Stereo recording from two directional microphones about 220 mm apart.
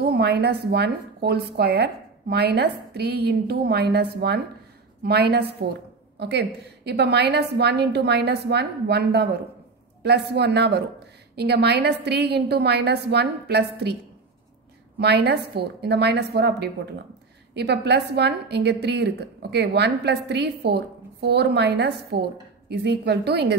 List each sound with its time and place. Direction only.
0.0 s a woman's voice: 45° right (ahead or behind)
15.0 s a woman's voice: 50° right (ahead or behind)